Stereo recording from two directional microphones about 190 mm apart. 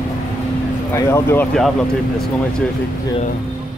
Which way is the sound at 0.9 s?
15° left (ahead or behind).